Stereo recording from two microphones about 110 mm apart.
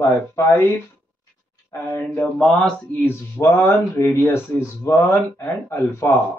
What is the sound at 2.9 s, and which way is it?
Speech, 20° left (ahead or behind).